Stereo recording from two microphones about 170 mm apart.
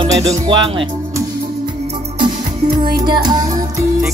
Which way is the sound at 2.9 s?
25° right (ahead or behind).